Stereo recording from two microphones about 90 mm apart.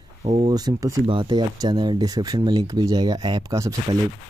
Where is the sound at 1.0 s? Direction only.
60° right (ahead or behind).